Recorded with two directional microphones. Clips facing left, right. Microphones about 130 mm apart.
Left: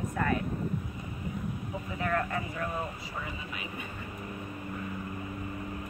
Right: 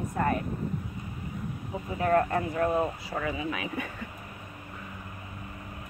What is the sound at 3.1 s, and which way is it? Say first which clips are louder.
Speech: right 8 dB; 90° right.